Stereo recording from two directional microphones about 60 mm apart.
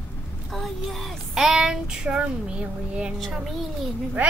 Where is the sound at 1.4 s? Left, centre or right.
Centre.